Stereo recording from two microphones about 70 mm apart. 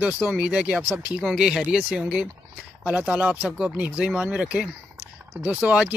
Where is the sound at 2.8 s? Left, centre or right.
Centre.